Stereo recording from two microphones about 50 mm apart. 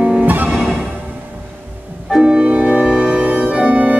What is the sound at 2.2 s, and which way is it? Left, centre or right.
Music, centre.